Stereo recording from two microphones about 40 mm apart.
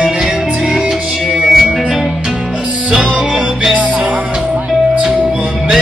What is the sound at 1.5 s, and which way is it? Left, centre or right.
Music, centre.